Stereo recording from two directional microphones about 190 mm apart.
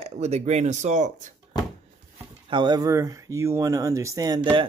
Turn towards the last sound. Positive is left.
turn(degrees=-20)  # may be behind; listen again after turning